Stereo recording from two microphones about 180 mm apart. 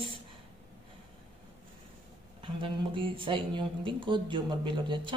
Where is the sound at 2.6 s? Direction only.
30° right (ahead or behind).